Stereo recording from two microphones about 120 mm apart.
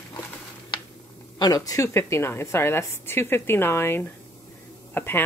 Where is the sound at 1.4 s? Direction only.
30° left (ahead or behind).